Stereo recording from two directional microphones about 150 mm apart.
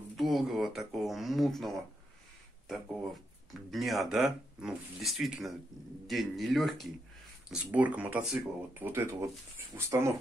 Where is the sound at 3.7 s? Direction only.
Centre (ahead or behind).